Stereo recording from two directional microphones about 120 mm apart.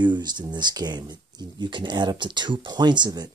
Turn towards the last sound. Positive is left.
turn(degrees=-35)  # may be behind; listen again after turning